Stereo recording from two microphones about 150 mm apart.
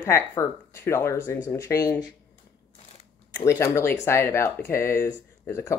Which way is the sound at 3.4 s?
20° left (ahead or behind).